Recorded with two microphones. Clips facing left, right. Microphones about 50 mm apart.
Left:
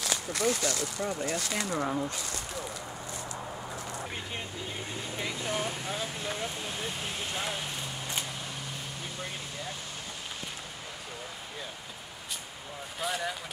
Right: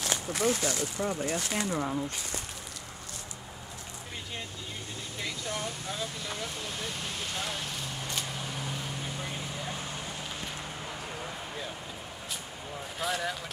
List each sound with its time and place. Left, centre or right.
0.1 s a sound: centre
0.6 s speech: centre
1.7 s speech: centre
5.2 s vehicle: left
13.0 s speech: centre